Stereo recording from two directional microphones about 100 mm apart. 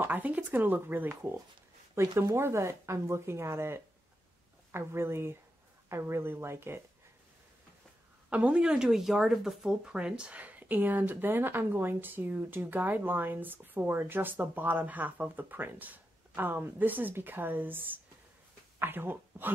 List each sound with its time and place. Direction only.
0.0 s speech: 15° right (ahead or behind)
2.3 s speech: 25° right (ahead or behind)
8.3 s speech: 15° right (ahead or behind)